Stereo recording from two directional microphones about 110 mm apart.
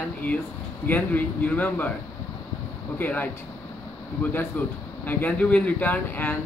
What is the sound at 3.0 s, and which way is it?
Speech, 15° left (ahead or behind).